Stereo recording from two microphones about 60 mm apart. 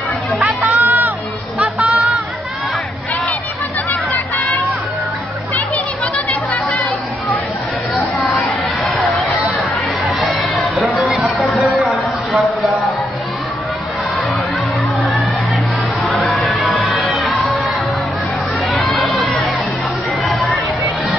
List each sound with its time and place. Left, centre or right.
0.7 s crowd: right
6.1 s music: left
7.9 s a sound: centre
10.8 s music: centre
11.6 s a sound: centre
16.0 s music: centre
18.7 s crowd: centre
20.2 s music: centre